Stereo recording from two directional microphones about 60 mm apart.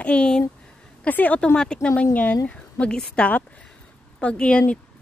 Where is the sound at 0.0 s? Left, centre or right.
Centre.